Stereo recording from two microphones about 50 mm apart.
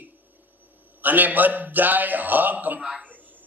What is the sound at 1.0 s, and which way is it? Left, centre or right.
A man's voice, right.